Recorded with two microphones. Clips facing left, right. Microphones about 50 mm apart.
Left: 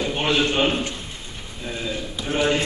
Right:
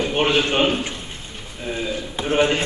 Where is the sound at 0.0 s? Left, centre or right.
Right.